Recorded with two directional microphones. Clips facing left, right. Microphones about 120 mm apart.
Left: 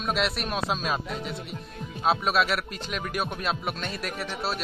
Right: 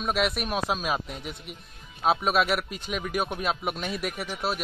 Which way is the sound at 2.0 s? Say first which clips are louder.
Right 1 dB; 5° right (ahead or behind).